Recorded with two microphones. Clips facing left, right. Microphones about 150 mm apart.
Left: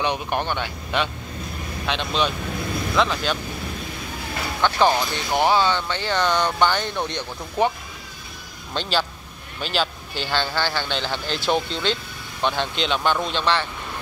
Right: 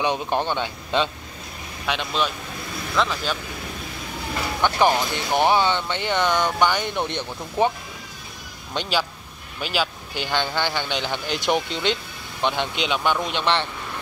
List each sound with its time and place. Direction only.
0.3 s speech: 20° right (ahead or behind)
1.9 s speech: 5° right (ahead or behind)
4.6 s speech: 15° right (ahead or behind)
6.3 s speech: 5° right (ahead or behind)
6.8 s speech: 20° right (ahead or behind)
8.7 s speech: 10° right (ahead or behind)